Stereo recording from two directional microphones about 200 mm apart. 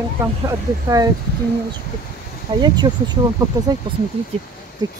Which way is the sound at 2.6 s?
20° right (ahead or behind).